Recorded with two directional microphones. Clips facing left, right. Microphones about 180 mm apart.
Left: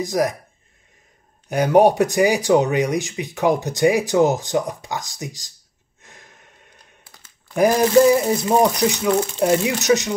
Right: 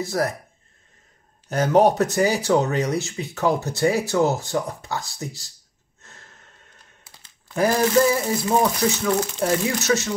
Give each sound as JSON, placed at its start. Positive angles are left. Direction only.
{"t": 0.0, "sound": "speech", "side_deg": 15}
{"t": 1.5, "sound": "speech", "side_deg": 15}
{"t": 6.0, "sound": "a sound", "side_deg": 15}
{"t": 7.5, "sound": "speech", "side_deg": 15}